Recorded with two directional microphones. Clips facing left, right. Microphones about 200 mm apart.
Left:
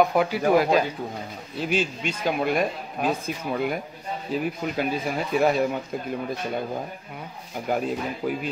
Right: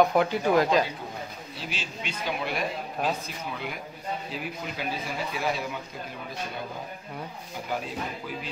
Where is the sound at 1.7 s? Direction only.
50° left (ahead or behind).